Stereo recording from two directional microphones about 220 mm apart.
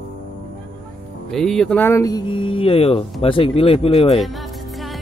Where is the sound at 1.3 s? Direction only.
Centre (ahead or behind); by 4.2 s 25° left (ahead or behind).